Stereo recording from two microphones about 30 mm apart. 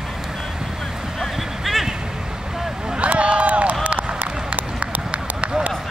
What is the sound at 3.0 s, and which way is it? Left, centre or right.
Run, right.